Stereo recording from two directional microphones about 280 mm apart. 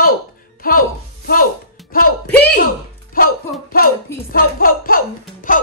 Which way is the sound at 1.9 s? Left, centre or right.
Left.